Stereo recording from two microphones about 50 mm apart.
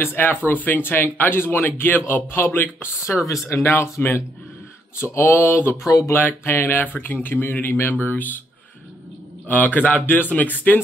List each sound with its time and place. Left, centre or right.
0.0 s a man's voice: left
3.2 s speech: left
3.6 s speech: left
5.9 s speech: left
6.1 s a man's voice: left
9.5 s speech: left